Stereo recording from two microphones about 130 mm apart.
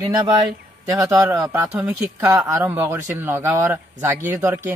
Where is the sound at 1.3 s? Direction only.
15° right (ahead or behind).